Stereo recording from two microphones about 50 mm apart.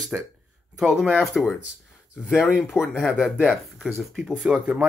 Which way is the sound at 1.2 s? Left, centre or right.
Centre.